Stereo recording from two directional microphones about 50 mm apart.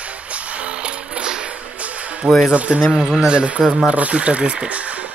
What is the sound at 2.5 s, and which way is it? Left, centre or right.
A man's voice, right.